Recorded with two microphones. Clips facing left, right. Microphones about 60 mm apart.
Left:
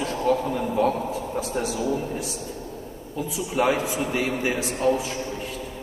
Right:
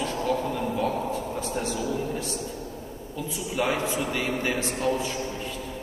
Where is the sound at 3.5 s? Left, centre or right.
Left.